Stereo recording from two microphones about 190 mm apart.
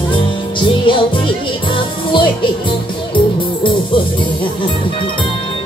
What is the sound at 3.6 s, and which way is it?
Music, 25° left (ahead or behind).